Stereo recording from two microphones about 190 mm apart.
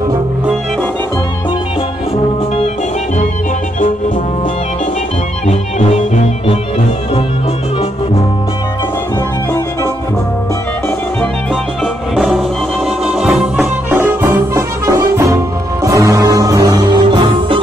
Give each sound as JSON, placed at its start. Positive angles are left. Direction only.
{"t": 5.5, "sound": "music", "side_deg": 35}
{"t": 11.8, "sound": "music", "side_deg": 0}